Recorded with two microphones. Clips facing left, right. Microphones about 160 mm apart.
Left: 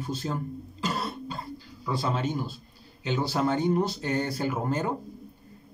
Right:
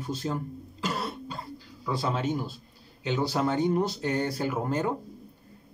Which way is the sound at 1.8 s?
Centre (ahead or behind).